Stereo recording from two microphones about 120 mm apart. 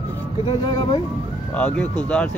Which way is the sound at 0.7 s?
35° left (ahead or behind).